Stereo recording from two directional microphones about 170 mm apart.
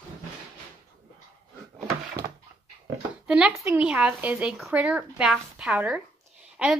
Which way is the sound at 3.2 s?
5° right (ahead or behind).